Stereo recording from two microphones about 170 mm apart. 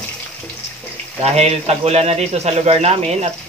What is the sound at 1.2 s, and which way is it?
Speech, 40° right (ahead or behind).